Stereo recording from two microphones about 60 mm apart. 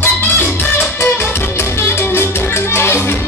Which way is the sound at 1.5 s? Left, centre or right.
Left.